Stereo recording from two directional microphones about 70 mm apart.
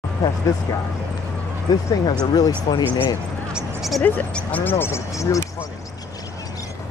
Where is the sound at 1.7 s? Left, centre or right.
Left.